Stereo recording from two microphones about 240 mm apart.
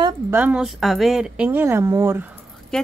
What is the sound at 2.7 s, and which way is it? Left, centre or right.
Speech, centre.